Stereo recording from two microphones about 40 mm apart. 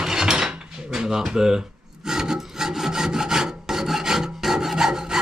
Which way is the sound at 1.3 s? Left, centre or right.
Centre.